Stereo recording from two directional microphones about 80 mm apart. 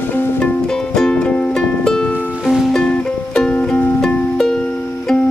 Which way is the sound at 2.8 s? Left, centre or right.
Centre.